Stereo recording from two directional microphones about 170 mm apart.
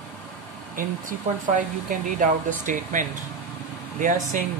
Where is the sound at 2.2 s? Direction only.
50° right (ahead or behind).